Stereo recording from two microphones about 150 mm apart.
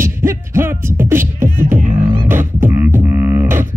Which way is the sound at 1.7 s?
55° right (ahead or behind).